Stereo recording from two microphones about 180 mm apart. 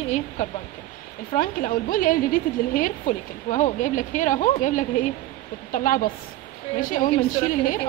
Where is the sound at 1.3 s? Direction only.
50° left (ahead or behind).